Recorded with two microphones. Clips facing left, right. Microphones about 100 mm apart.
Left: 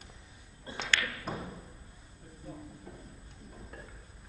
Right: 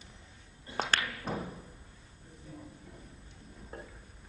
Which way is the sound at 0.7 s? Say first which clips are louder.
Right 2 dB; 40° right (ahead or behind).